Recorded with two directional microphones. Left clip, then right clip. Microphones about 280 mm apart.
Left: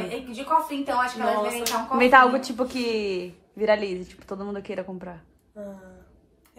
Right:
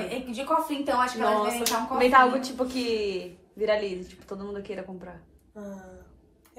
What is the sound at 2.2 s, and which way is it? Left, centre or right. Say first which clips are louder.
A woman's voice: left 1 dB; left.